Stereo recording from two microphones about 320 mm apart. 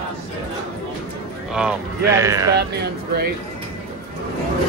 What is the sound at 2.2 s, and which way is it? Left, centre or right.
Speech, centre.